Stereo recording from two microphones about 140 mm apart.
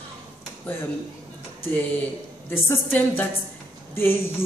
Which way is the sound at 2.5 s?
15° left (ahead or behind).